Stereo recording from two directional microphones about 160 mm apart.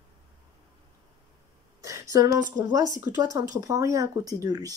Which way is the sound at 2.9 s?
25° right (ahead or behind).